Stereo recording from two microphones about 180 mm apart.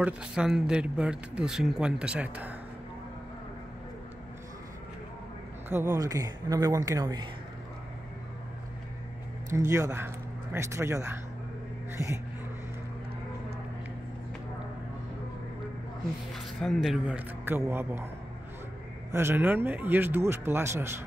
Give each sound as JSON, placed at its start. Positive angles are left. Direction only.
{"t": 0.0, "sound": "speech", "side_deg": -5}
{"t": 5.7, "sound": "speech", "side_deg": -15}
{"t": 9.5, "sound": "speech", "side_deg": -15}
{"t": 16.3, "sound": "speech", "side_deg": 0}
{"t": 19.1, "sound": "speech", "side_deg": -10}